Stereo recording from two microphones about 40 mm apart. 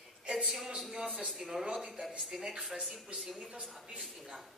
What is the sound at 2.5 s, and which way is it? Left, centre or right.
Speech, right.